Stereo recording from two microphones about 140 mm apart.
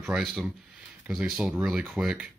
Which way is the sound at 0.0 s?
Centre (ahead or behind).